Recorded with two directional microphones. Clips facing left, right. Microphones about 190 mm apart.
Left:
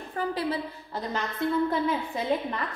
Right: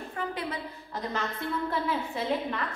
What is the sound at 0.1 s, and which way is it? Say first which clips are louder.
Speech: left 6 dB; 35° left (ahead or behind).